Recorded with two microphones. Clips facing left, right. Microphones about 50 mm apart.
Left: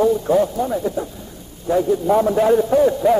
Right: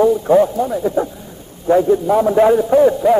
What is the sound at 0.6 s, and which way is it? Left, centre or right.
Speech, centre.